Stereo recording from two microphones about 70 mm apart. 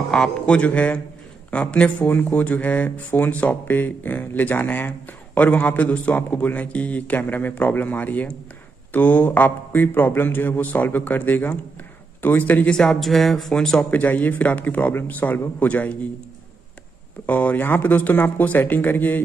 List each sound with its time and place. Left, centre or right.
0.1 s speech: centre
13.8 s speech: left
17.3 s speech: left